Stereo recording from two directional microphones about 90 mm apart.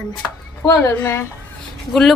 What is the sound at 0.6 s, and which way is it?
Speech, 25° left (ahead or behind).